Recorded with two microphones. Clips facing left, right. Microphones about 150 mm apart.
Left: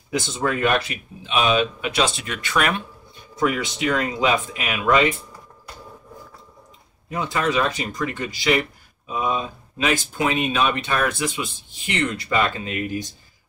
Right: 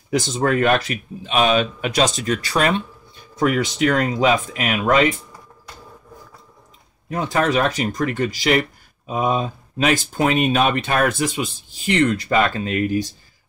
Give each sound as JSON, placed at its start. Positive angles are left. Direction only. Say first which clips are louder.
{"t": 0.3, "sound": "speech", "louder": "right 3 dB", "side_deg": -50}
{"t": 3.3, "sound": "speech", "louder": "right 4 dB", "side_deg": -45}
{"t": 7.1, "sound": "speech", "louder": "right 4 dB", "side_deg": -50}